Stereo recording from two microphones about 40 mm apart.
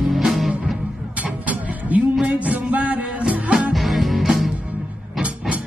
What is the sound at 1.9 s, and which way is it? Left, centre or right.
Music, right.